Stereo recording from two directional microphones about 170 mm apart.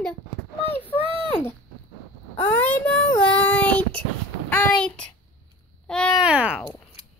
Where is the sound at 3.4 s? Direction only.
10° left (ahead or behind).